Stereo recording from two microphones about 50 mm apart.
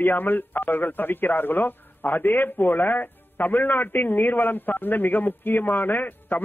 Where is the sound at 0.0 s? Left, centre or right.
Left.